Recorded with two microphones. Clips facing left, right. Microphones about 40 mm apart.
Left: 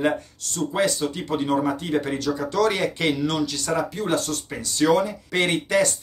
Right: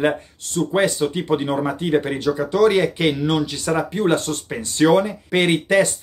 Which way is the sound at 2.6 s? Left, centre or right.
Centre.